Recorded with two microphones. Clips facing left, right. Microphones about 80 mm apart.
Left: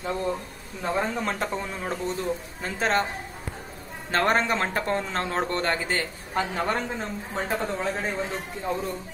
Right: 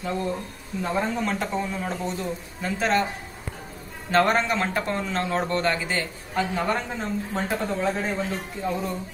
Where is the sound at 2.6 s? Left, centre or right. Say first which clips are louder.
Right 2 dB; left.